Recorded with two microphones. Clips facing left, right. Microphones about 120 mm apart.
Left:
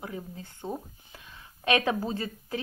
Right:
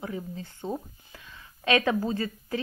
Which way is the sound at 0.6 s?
10° left (ahead or behind).